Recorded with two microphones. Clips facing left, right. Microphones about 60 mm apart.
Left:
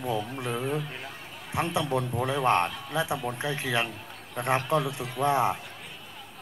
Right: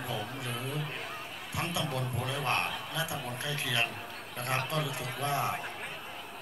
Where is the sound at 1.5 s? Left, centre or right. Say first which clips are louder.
Left 7 dB; left.